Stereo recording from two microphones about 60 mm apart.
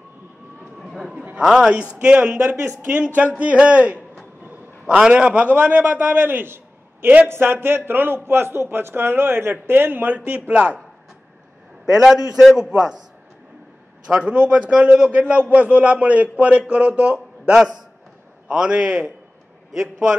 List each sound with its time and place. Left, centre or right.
0.7 s chatter: centre
1.4 s a man's voice: centre
2.0 s a man's voice: right
2.4 s a man's voice: right
3.3 s a man's voice: right
10.5 s a man's voice: centre
11.8 s a man's voice: centre
14.0 s a man's voice: centre